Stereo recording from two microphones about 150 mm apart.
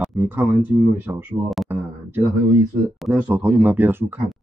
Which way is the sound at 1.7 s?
15° right (ahead or behind).